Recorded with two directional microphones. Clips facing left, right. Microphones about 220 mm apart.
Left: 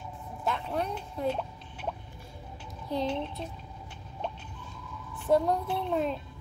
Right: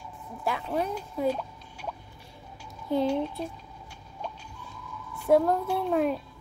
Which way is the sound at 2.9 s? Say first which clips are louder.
Right 5 dB; 5° right (ahead or behind).